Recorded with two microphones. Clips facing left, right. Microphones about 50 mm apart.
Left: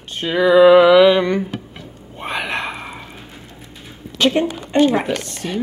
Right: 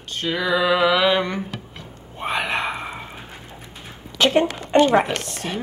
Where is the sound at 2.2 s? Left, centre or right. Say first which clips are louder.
Even; centre.